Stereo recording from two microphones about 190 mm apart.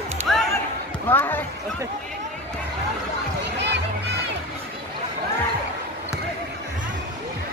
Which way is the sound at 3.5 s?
65° right (ahead or behind).